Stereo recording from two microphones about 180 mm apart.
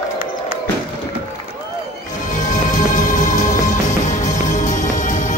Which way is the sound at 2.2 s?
45° left (ahead or behind).